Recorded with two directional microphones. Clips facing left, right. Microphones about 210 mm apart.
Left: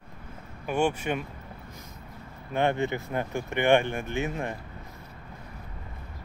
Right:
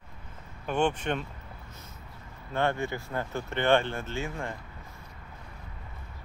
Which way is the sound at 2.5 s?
15° left (ahead or behind).